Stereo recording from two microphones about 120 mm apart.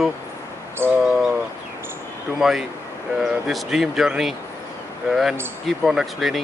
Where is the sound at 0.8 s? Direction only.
20° right (ahead or behind).